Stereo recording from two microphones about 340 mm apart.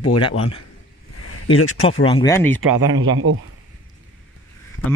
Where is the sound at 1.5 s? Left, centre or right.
Left.